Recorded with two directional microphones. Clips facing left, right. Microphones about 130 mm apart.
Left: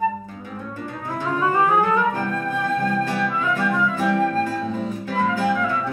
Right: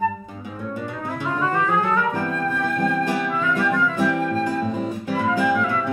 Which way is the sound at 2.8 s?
20° right (ahead or behind).